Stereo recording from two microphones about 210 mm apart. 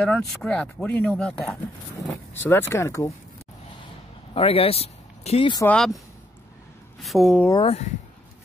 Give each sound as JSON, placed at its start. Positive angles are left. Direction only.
{"t": 0.0, "sound": "speech", "side_deg": 5}
{"t": 4.3, "sound": "speech", "side_deg": 25}
{"t": 5.6, "sound": "speech", "side_deg": 10}
{"t": 7.0, "sound": "speech", "side_deg": 0}
{"t": 7.6, "sound": "speech", "side_deg": 30}